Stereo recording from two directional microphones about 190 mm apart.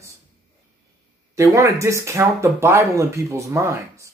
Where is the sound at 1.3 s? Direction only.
15° right (ahead or behind).